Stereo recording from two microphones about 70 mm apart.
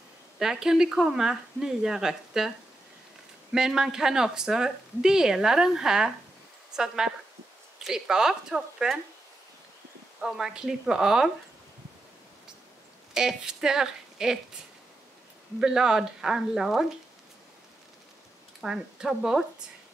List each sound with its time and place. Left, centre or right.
0.4 s speech: centre
3.5 s speech: centre
7.8 s speech: centre
10.2 s speech: centre
13.1 s speech: centre
15.6 s speech: centre
18.6 s speech: centre